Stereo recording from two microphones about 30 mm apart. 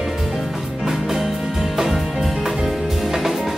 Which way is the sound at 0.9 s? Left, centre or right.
Centre.